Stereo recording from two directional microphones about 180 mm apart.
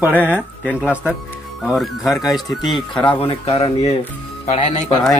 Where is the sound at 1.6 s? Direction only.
Centre (ahead or behind).